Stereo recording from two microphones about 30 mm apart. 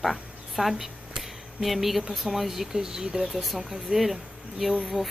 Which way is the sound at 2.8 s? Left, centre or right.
Right.